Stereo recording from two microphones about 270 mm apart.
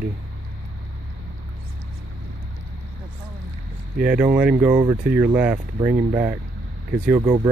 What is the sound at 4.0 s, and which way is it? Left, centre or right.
Speech, centre.